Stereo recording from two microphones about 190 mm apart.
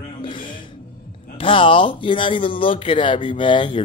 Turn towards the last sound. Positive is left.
turn(degrees=25)  # may be behind; listen again after turning